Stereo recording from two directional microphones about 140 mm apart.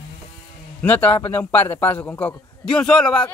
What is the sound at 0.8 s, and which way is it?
A man's voice, 10° left (ahead or behind).